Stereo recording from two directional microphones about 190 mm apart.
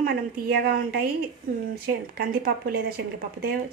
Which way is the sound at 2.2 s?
55° right (ahead or behind).